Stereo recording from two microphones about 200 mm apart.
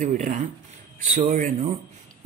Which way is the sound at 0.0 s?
40° right (ahead or behind).